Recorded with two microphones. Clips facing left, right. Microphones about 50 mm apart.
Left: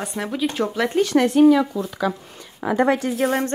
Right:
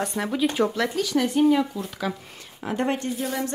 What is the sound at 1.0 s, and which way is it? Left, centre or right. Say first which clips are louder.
Speech: left 7 dB; left.